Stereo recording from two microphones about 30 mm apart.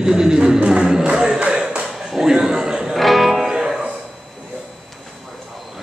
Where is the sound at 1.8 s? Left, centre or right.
Centre.